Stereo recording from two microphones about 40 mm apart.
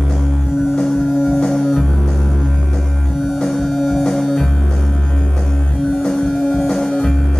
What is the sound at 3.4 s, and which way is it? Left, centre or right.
Music, centre.